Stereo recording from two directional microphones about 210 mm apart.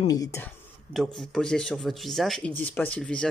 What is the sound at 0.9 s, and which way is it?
Speech, centre (ahead or behind).